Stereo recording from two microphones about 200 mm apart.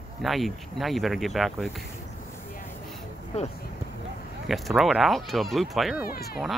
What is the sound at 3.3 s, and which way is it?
Speech, 30° left (ahead or behind).